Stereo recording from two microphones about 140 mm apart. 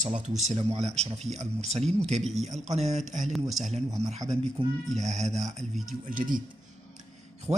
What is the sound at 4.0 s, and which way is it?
Speech, 50° right (ahead or behind).